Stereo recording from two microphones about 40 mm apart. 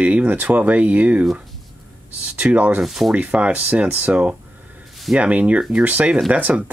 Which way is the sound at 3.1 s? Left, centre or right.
Right.